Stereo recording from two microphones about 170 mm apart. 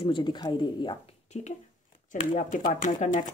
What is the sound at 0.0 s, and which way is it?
Speech, 30° left (ahead or behind).